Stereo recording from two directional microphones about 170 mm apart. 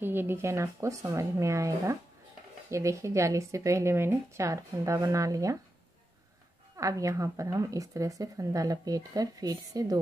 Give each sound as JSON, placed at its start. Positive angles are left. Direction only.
{"t": 0.0, "sound": "speech", "side_deg": -10}
{"t": 6.8, "sound": "a woman's voice", "side_deg": -20}